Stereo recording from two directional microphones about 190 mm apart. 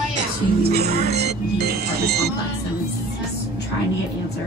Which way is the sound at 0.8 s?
35° right (ahead or behind).